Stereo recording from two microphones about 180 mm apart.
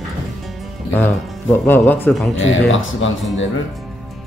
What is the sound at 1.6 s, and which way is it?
Speech, 10° left (ahead or behind).